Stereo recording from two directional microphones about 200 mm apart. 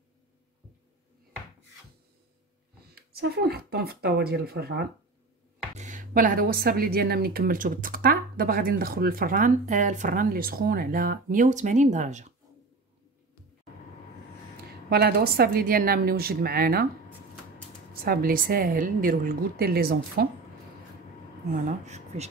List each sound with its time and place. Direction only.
2.9 s speech: 55° right (ahead or behind)
5.8 s speech: 40° right (ahead or behind)
14.9 s speech: 50° right (ahead or behind)
18.0 s speech: 45° right (ahead or behind)
21.6 s speech: 35° right (ahead or behind)